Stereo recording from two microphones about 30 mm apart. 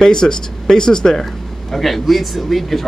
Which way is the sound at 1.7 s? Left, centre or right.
Centre.